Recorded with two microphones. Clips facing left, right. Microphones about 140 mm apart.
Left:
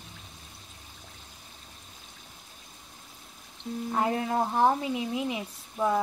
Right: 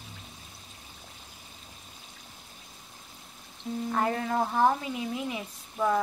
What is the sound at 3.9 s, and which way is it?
Speech, 20° left (ahead or behind).